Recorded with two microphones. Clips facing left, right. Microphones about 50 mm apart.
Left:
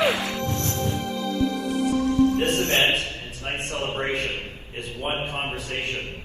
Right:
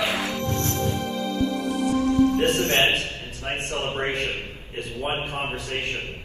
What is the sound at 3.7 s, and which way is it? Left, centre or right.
A man's voice, right.